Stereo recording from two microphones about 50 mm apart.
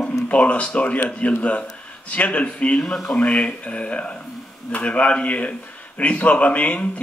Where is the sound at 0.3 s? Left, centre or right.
Left.